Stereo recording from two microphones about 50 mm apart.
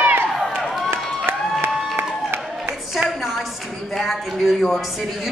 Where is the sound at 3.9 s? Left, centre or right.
Centre.